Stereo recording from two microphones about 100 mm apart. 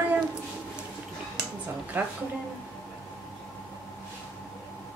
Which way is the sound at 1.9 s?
20° right (ahead or behind).